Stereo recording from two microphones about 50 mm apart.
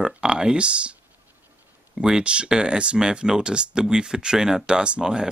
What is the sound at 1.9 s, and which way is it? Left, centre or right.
Speech, centre.